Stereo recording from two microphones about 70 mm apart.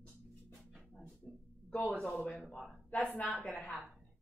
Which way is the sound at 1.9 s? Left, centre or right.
Centre.